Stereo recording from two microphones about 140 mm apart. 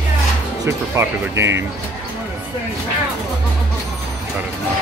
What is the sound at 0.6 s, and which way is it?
Speech, 20° right (ahead or behind).